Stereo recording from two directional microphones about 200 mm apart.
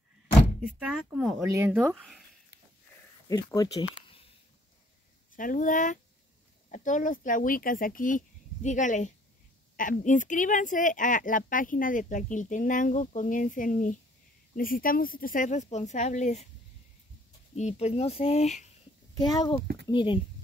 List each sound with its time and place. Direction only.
0.6 s speech: 5° right (ahead or behind)
3.3 s speech: 15° left (ahead or behind)
5.3 s speech: 40° left (ahead or behind)
17.6 s speech: 35° left (ahead or behind)
19.2 s speech: 20° left (ahead or behind)